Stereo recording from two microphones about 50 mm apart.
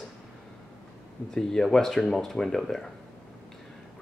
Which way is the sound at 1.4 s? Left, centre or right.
Centre.